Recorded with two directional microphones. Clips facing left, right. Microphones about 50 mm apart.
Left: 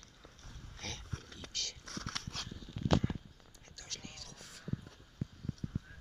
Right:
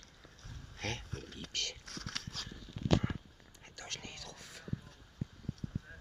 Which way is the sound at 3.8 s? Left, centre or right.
Right.